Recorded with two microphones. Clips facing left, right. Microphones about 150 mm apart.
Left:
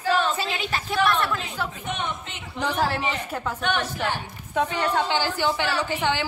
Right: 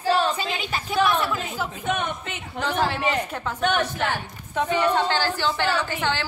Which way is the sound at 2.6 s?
5° left (ahead or behind).